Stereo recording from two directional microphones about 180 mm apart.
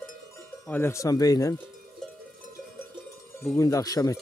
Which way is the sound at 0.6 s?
10° left (ahead or behind).